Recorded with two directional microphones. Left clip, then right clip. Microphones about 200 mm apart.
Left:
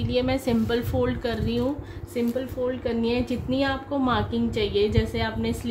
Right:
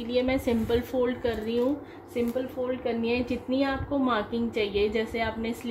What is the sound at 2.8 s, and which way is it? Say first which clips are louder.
A woman's voice: even; 20° left (ahead or behind).